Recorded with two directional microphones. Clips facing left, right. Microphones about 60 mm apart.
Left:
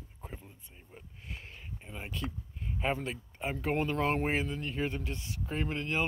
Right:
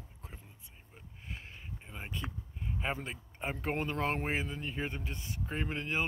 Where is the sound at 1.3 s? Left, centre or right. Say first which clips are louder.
Even; centre.